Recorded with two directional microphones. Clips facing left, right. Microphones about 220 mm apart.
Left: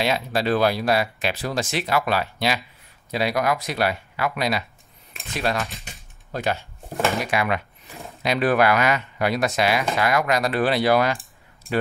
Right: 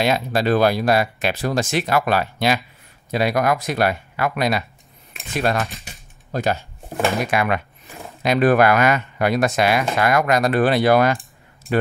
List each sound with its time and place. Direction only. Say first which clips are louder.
0.0 s speech: right 3 dB; 50° right (ahead or behind)
5.7 s typewriter: right 2 dB; centre (ahead or behind)
6.3 s speech: right 4 dB; 40° right (ahead or behind)